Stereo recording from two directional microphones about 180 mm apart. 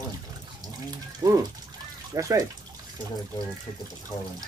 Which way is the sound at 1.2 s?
20° right (ahead or behind).